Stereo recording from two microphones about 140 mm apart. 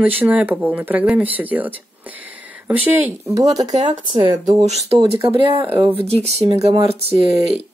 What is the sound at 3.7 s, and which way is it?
Speech, 35° right (ahead or behind).